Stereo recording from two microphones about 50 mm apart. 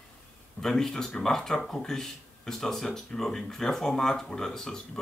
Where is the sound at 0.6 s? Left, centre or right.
Centre.